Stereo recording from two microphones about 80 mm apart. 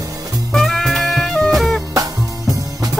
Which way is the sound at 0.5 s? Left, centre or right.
Centre.